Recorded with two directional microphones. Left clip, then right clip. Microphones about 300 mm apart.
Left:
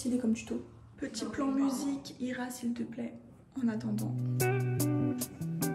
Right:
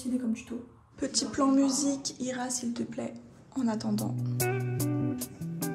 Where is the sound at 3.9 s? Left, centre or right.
Centre.